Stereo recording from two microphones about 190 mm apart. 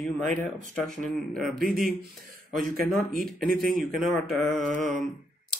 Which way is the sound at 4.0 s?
Centre (ahead or behind).